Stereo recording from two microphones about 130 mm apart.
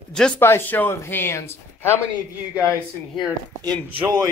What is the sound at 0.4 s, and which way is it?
Speech, 15° left (ahead or behind).